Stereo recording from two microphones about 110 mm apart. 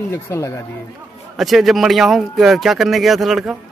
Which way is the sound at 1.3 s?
Centre (ahead or behind).